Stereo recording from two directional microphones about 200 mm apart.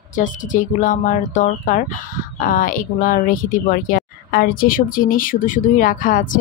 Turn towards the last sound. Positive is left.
turn(degrees=40)  # may be behind; listen again after turning